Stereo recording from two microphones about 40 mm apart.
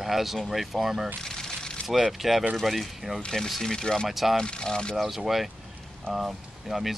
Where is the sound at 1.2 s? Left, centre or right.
Centre.